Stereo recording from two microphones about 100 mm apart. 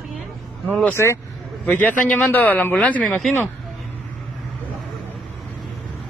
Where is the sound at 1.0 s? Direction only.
25° left (ahead or behind).